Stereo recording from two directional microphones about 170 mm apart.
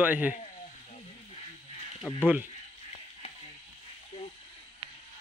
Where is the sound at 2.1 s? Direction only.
10° left (ahead or behind).